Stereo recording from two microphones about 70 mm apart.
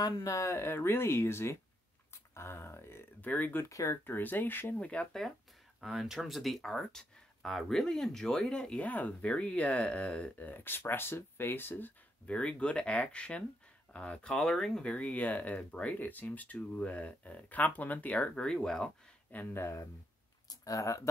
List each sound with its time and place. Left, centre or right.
0.0 s speech: left
0.3 s speech: left
3.6 s speech: left
4.0 s speech: left
4.7 s speech: centre
5.8 s speech: centre
10.3 s speech: left
12.3 s speech: centre
19.5 s speech: left